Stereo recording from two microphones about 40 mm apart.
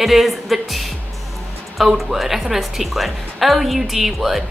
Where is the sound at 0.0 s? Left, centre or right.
Centre.